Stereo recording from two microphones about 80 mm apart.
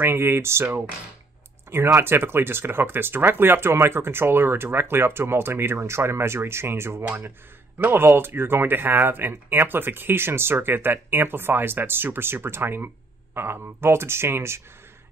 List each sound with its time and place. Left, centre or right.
0.0 s speech: right
2.0 s speech: right